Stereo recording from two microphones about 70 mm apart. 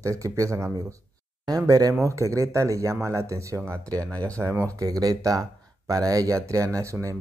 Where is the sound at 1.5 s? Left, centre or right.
Right.